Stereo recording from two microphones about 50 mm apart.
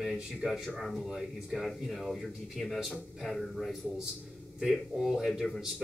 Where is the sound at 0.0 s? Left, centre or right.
Centre.